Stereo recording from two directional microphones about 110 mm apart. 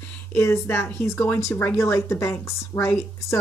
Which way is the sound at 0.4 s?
20° left (ahead or behind).